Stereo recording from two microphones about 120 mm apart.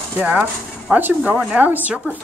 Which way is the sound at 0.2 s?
10° right (ahead or behind).